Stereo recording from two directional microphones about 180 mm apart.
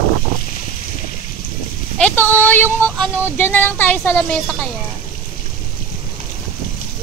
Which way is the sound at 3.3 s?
10° left (ahead or behind).